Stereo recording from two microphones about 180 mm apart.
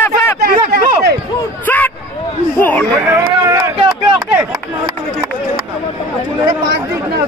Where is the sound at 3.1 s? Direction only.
15° right (ahead or behind).